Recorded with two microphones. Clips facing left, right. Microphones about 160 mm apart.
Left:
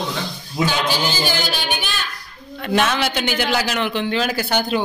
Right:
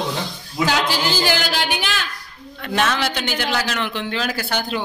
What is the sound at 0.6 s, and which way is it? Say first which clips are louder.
A woman's voice: even; 90° right.